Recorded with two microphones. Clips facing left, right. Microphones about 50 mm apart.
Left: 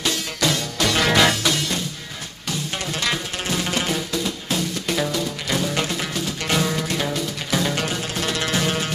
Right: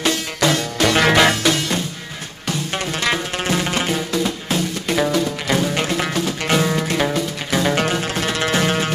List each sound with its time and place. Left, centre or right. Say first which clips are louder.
0.0 s music: right 4 dB; right
1.4 s music: right 4 dB; right
3.0 s music: right 4 dB; right
4.1 s music: right 4 dB; right
4.6 s music: right 4 dB; right
5.9 s music: right 6 dB; right
6.4 s music: right 3 dB; right